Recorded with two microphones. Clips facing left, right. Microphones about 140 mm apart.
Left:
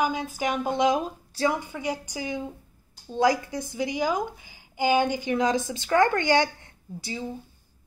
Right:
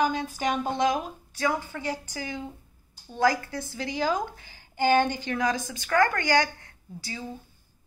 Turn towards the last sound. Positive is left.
turn(degrees=20)  # may be behind; listen again after turning